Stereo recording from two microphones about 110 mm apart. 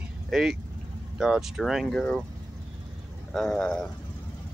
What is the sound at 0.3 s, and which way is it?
Speech, 5° right (ahead or behind).